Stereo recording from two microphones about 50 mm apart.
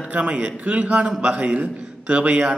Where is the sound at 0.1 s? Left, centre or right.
Right.